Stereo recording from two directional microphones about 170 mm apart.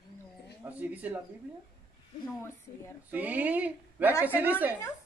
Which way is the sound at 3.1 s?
10° right (ahead or behind).